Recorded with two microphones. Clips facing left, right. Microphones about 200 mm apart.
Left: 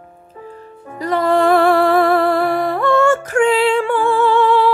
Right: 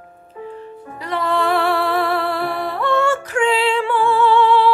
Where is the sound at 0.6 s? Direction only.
45° left (ahead or behind).